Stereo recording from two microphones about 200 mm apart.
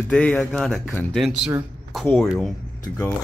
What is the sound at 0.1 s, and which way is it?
Speech, 5° left (ahead or behind).